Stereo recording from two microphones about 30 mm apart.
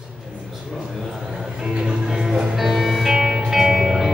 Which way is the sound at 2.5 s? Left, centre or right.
Centre.